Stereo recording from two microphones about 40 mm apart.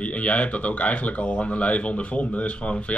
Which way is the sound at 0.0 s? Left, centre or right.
Left.